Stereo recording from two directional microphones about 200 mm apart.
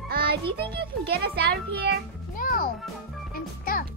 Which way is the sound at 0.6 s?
55° right (ahead or behind).